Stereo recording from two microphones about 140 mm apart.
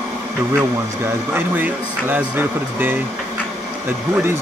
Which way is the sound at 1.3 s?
15° right (ahead or behind).